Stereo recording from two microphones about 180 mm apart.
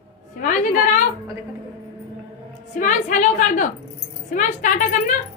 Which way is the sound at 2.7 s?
45° left (ahead or behind).